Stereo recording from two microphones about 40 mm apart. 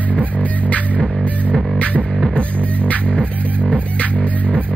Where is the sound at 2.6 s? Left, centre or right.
Left.